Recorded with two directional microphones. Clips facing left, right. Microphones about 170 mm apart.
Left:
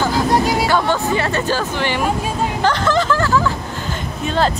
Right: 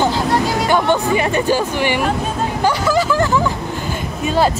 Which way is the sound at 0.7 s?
15° right (ahead or behind).